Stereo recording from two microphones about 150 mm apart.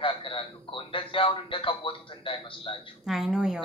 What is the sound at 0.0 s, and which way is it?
A man's voice, 35° left (ahead or behind).